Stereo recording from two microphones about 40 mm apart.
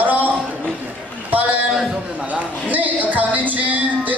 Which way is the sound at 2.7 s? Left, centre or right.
Right.